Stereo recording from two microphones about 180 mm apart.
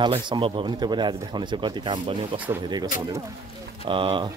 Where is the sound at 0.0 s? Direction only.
25° right (ahead or behind).